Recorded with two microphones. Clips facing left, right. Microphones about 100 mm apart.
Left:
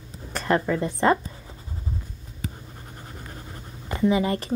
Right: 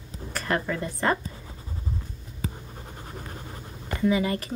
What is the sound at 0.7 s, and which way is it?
Speech, 25° left (ahead or behind).